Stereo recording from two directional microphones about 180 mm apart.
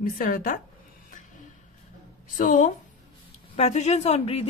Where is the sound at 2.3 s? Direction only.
45° left (ahead or behind).